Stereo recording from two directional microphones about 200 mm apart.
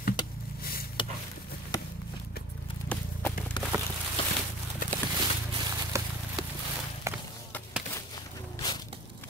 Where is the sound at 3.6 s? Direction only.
20° left (ahead or behind).